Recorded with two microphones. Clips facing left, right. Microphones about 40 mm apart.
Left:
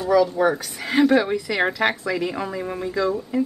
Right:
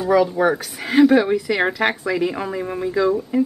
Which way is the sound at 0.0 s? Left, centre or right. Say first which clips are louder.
Right 1 dB; centre.